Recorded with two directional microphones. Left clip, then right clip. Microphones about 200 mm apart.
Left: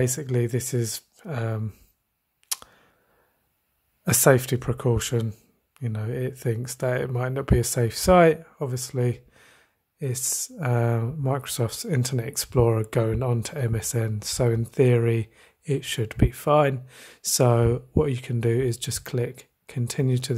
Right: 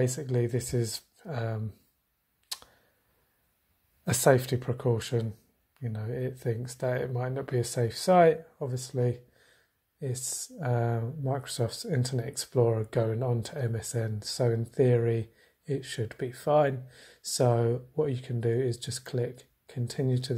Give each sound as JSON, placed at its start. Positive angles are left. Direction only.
{"t": 0.0, "sound": "speech", "side_deg": 30}
{"t": 2.4, "sound": "a sound", "side_deg": 30}
{"t": 4.0, "sound": "speech", "side_deg": 30}